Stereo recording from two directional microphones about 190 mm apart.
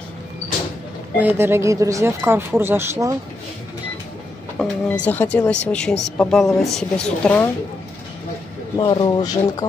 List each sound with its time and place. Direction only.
1.1 s speech: 10° right (ahead or behind)
5.0 s speech: 10° left (ahead or behind)
8.7 s speech: 25° left (ahead or behind)